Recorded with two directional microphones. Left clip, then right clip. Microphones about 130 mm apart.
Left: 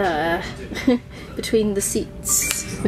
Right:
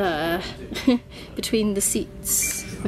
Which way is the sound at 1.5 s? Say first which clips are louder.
Left 4 dB; 30° right (ahead or behind).